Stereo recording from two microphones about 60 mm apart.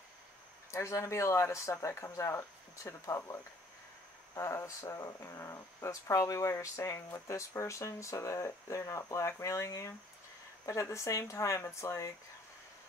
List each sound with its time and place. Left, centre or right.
0.7 s speech: left
4.4 s speech: left